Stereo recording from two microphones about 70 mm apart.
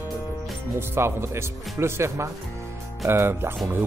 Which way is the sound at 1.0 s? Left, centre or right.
Right.